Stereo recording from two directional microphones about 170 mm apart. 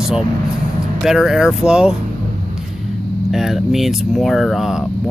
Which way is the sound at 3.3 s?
Centre (ahead or behind).